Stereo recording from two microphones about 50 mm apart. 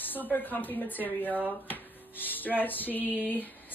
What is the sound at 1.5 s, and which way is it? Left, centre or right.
Music, left.